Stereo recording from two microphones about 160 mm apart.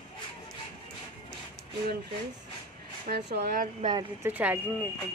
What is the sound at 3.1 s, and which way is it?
Speech, 70° right (ahead or behind).